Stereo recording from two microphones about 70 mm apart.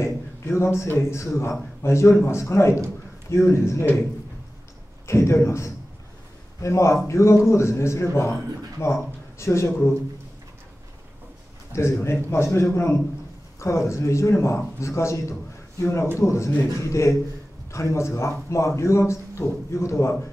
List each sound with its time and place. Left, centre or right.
0.0 s a man's voice: left
5.0 s speech: left
11.7 s a man's voice: left